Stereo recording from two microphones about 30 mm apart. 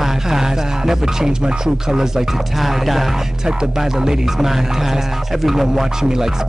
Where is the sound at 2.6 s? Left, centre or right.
Centre.